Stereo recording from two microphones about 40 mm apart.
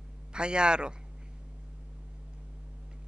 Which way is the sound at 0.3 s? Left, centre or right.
Right.